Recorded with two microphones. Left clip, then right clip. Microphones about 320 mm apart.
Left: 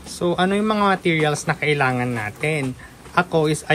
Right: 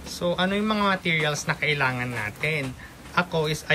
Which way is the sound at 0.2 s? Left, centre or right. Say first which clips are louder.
Left 5 dB; centre.